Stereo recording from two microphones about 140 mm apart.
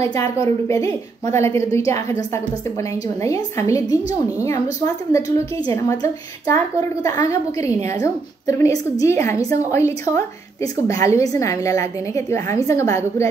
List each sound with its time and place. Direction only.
0.0 s a woman's voice: 25° left (ahead or behind)